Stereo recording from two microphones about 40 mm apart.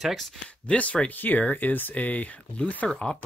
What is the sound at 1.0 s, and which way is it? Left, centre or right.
Speech, left.